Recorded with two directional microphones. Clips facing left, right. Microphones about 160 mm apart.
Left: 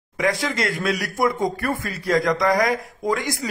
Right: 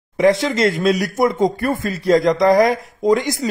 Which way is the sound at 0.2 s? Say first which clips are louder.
Right 8 dB; 25° right (ahead or behind).